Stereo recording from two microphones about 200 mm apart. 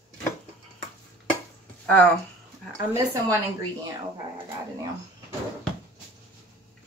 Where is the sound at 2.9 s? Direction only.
15° right (ahead or behind).